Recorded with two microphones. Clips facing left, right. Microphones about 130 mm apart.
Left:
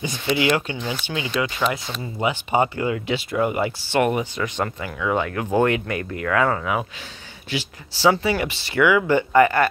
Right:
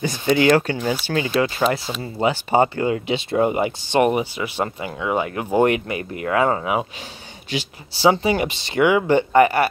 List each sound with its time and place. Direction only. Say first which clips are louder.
0.0 s speech: right 4 dB; 40° right (ahead or behind); by 9.7 s 20° right (ahead or behind)